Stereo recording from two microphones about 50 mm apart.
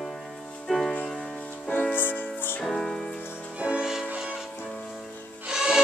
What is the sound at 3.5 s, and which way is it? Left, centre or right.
Music, right.